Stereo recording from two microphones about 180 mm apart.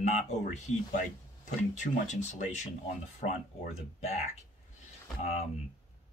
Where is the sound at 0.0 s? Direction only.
40° left (ahead or behind).